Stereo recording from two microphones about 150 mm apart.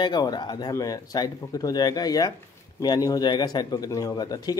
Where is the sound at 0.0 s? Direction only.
30° left (ahead or behind).